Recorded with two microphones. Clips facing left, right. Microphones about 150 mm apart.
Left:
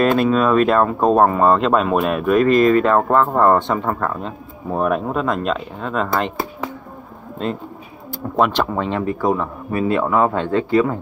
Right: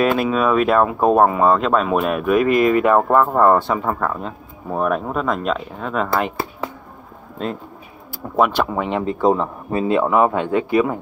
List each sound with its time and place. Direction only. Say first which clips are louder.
0.0 s speech: left 2 dB; 5° right (ahead or behind)
7.4 s speech: left 2 dB; centre (ahead or behind)